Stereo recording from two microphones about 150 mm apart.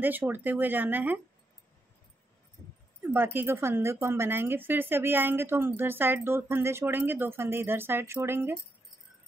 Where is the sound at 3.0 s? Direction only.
15° right (ahead or behind).